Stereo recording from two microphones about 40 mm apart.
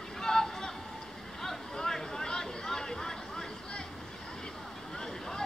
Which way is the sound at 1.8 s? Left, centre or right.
Centre.